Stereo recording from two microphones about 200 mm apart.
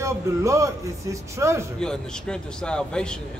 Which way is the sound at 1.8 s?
5° left (ahead or behind).